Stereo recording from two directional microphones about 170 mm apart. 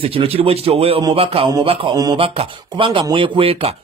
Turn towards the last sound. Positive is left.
turn(degrees=-35)  # may be behind; listen again after turning